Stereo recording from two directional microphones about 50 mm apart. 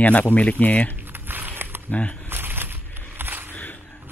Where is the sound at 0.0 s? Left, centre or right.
Left.